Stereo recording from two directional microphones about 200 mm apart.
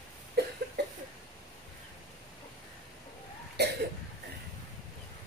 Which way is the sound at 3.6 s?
55° right (ahead or behind).